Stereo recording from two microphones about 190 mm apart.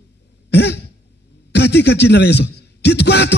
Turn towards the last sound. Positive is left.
turn(degrees=60)  # may be behind; listen again after turning